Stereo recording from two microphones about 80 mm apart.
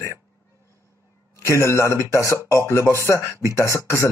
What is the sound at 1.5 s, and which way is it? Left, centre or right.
Speech, left.